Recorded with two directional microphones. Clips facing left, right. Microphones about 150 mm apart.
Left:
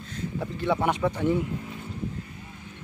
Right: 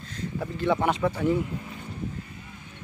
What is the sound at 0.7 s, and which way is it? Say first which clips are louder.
Speech: even; 5° left (ahead or behind).